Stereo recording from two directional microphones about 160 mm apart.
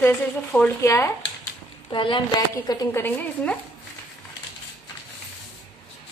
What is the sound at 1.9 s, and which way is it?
Speech, 30° left (ahead or behind).